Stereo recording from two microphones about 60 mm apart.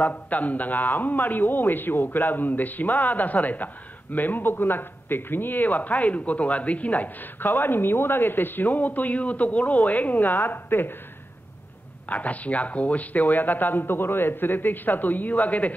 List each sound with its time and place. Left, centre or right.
0.0 s a man's voice: left
12.1 s speech: left